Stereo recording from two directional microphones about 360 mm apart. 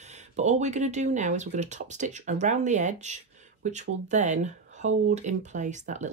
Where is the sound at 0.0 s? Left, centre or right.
Centre.